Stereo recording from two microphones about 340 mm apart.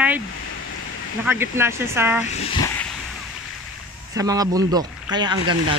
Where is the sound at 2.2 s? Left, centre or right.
Centre.